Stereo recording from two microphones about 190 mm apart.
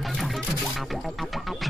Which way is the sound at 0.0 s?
Centre (ahead or behind).